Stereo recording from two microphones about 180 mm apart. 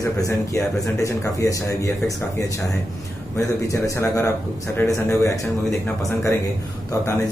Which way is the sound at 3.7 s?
15° left (ahead or behind).